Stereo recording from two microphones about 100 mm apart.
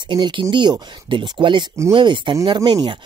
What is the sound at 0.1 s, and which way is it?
Speech, 55° right (ahead or behind).